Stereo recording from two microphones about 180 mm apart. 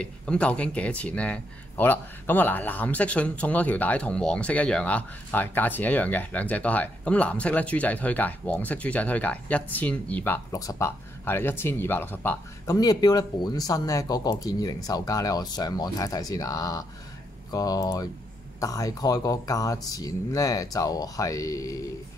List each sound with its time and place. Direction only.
0.0 s speech: 5° left (ahead or behind)
12.7 s speech: 20° left (ahead or behind)